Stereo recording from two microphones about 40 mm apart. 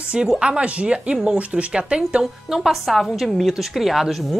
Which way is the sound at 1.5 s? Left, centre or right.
Right.